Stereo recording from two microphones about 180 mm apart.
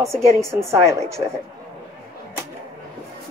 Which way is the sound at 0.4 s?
15° right (ahead or behind).